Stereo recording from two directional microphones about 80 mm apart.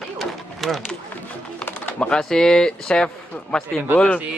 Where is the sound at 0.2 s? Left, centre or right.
Centre.